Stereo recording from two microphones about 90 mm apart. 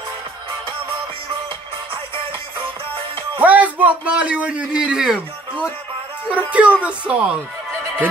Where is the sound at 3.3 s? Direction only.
15° right (ahead or behind).